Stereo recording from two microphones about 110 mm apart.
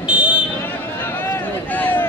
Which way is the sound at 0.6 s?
20° left (ahead or behind).